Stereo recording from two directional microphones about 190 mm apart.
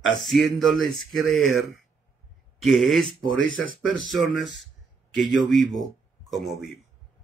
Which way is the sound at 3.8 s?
90° left.